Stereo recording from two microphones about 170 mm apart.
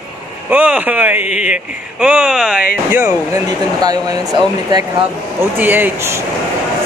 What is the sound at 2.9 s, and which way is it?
Speech, 15° right (ahead or behind).